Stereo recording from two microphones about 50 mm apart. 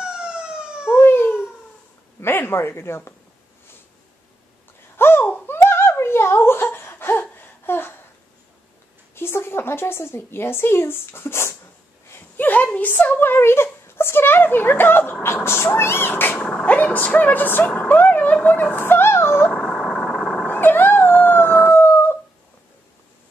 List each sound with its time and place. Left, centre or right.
0.0 s emergency vehicle: centre
0.9 s cat: left
2.1 s speech: left
4.9 s a sound: left
5.5 s giggle: left
9.1 s a woman's voice: left
12.4 s a sound: left
12.6 s a woman's voice: left
12.9 s speech: left
16.6 s a woman's voice: left
18.8 s a sound: left
19.6 s vehicle: centre
20.6 s howl: left